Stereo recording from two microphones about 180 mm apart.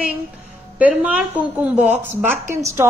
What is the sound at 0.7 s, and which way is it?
Speech, 5° right (ahead or behind).